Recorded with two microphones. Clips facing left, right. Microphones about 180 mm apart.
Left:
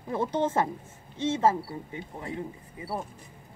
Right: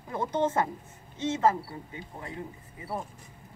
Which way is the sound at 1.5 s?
25° left (ahead or behind).